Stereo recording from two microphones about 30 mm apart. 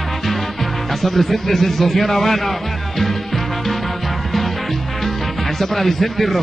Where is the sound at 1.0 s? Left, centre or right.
Centre.